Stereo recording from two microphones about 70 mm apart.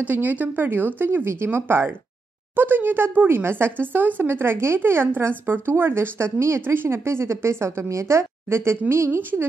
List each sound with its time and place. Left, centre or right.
0.0 s speech: right